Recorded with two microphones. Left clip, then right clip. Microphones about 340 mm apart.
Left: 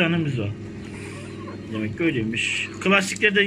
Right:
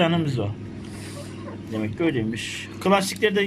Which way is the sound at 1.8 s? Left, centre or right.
Centre.